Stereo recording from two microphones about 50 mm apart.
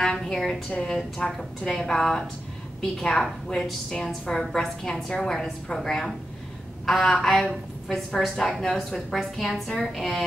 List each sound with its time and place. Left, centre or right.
0.0 s a woman's voice: centre